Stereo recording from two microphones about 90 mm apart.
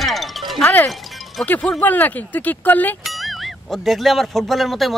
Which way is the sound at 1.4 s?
20° left (ahead or behind).